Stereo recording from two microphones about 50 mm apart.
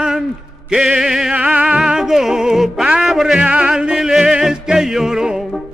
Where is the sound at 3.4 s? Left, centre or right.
Centre.